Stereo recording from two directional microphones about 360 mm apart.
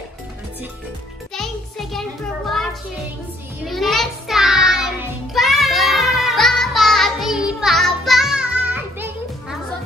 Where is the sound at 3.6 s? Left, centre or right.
Centre.